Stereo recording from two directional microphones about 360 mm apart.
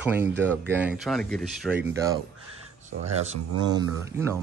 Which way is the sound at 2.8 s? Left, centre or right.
Centre.